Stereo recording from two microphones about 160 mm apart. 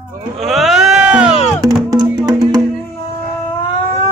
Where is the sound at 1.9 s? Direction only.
25° right (ahead or behind).